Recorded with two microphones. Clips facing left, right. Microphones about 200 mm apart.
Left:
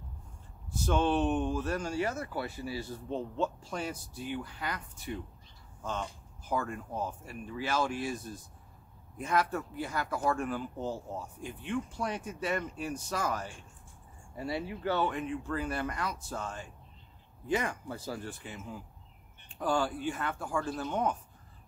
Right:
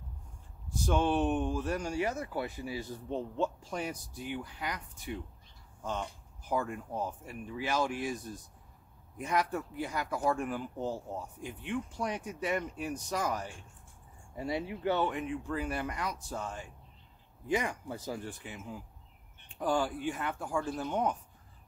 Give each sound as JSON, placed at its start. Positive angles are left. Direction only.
{"t": 0.7, "sound": "speech", "side_deg": -15}
{"t": 6.5, "sound": "speech", "side_deg": -15}
{"t": 9.2, "sound": "speech", "side_deg": -15}
{"t": 19.6, "sound": "speech", "side_deg": -15}